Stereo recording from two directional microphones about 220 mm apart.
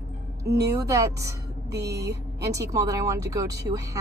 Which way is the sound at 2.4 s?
15° right (ahead or behind).